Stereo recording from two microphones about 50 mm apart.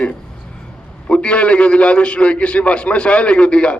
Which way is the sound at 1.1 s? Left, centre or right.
Left.